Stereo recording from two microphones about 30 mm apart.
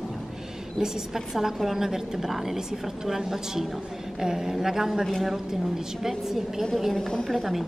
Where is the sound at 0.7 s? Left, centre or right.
Centre.